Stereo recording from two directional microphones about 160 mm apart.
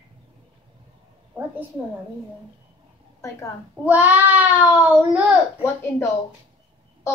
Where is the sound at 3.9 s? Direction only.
10° right (ahead or behind).